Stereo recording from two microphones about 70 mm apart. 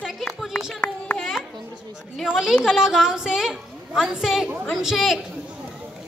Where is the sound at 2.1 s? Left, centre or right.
Centre.